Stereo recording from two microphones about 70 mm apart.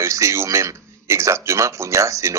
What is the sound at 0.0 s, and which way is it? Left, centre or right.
A man's voice, right.